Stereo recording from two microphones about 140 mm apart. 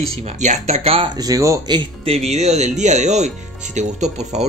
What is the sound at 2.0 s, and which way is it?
Speech, 50° right (ahead or behind).